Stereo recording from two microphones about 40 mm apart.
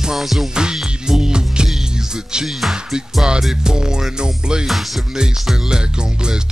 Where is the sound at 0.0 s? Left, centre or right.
Centre.